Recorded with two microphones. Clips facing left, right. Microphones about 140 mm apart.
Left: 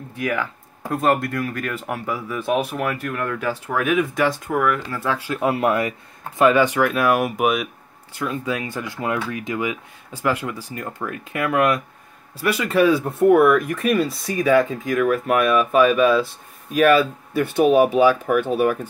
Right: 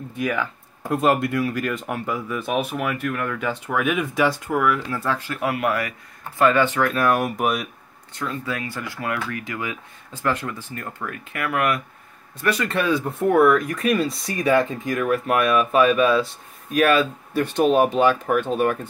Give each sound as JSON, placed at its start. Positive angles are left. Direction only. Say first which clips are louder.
{"t": 0.4, "sound": "speech", "louder": "even", "side_deg": 0}
{"t": 2.4, "sound": "speech", "louder": "left 4 dB", "side_deg": -5}
{"t": 5.1, "sound": "speech", "louder": "left 2 dB", "side_deg": 10}
{"t": 5.4, "sound": "speech", "louder": "left 5 dB", "side_deg": 25}
{"t": 8.1, "sound": "speech", "louder": "left 3 dB", "side_deg": 10}
{"t": 12.4, "sound": "speech", "louder": "left 4 dB", "side_deg": 5}